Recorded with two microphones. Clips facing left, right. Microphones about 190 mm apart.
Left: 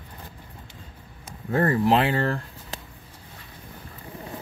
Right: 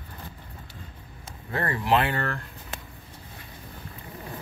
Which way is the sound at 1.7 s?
35° left (ahead or behind).